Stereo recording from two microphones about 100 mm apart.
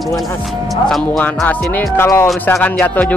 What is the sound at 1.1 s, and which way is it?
Speech, 15° left (ahead or behind).